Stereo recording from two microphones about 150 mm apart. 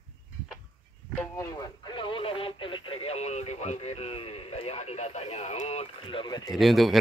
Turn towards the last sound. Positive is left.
turn(degrees=0)  # may be behind; listen again after turning